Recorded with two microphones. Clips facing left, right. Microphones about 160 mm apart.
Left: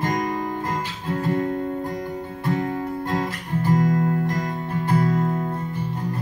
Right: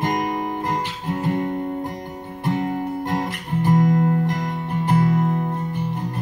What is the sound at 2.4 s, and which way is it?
Music, 20° right (ahead or behind).